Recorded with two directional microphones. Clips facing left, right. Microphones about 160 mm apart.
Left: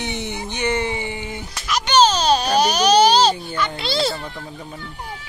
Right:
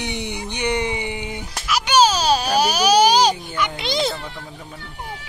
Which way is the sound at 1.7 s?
10° right (ahead or behind).